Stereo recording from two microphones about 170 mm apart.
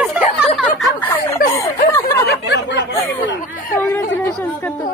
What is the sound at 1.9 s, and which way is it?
Chatter, 15° left (ahead or behind).